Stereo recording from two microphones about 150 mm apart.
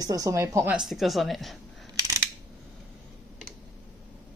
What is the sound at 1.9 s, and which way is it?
Scissors, 25° right (ahead or behind).